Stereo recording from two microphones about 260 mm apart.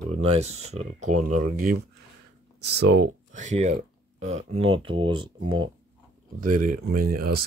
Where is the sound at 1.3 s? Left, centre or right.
Right.